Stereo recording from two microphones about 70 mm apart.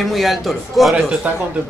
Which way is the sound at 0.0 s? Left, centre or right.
Centre.